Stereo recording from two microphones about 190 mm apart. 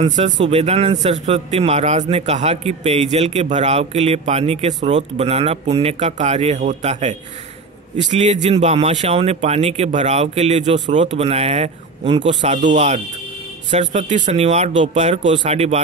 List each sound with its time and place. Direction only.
0.0 s speech: 35° right (ahead or behind)
8.2 s speech: 35° right (ahead or behind)